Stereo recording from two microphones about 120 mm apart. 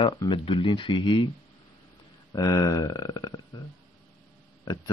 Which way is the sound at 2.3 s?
30° left (ahead or behind).